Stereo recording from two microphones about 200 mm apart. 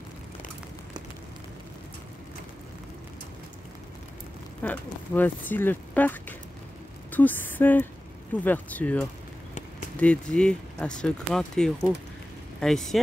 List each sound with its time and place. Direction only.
4.6 s speech: 10° left (ahead or behind)